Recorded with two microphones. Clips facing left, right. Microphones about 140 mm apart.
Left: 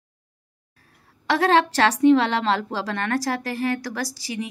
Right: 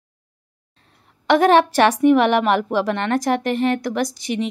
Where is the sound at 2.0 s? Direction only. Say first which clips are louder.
Left 1 dB; 15° right (ahead or behind).